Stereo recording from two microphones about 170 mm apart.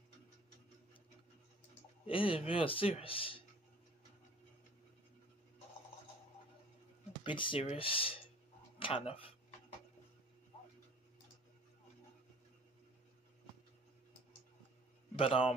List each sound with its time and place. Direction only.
2.0 s a man's voice: 30° left (ahead or behind)
7.2 s a man's voice: 30° left (ahead or behind)
15.1 s a man's voice: 35° left (ahead or behind)